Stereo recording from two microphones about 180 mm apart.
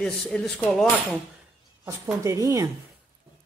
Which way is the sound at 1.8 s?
15° right (ahead or behind).